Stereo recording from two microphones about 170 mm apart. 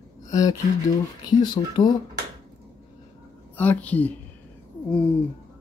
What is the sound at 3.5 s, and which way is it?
Speech, 10° left (ahead or behind).